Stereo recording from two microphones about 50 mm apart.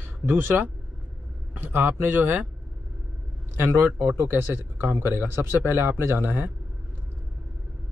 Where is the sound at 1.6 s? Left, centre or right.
Right.